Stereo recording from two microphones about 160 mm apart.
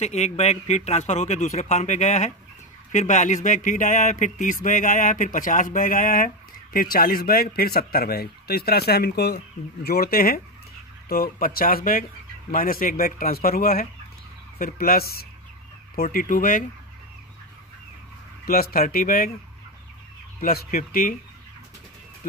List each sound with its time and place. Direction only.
0.0 s speech: 45° left (ahead or behind); by 9.4 s 85° left
9.8 s speech: 70° left (ahead or behind); by 16.6 s 55° left (ahead or behind)
18.4 s speech: 65° left (ahead or behind)
20.3 s speech: 65° left (ahead or behind)